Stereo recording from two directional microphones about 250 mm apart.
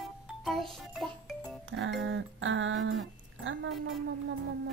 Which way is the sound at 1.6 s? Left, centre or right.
Right.